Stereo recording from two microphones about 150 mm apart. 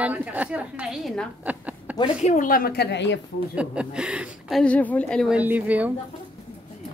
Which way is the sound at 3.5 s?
5° right (ahead or behind).